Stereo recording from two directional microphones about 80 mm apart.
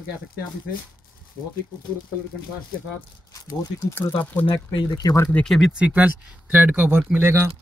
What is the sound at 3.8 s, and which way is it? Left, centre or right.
Speech, left.